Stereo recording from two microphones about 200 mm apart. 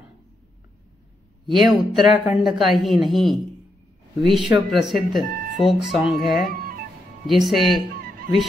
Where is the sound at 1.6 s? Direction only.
Centre (ahead or behind).